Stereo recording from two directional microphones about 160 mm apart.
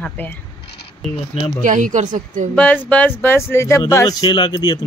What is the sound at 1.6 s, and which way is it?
Speech, 55° right (ahead or behind).